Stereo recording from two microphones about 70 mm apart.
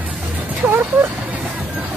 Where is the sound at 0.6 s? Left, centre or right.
Centre.